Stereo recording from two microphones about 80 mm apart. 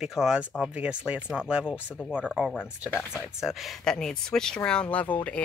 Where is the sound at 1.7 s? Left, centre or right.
Centre.